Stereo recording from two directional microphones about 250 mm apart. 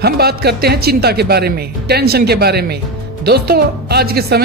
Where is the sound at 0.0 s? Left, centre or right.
Right.